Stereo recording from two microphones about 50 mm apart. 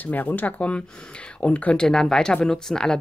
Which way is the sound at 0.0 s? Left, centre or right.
Left.